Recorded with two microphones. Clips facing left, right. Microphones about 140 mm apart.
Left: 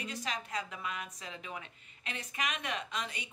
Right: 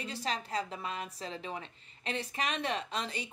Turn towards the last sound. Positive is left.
turn(degrees=-35)  # may be behind; listen again after turning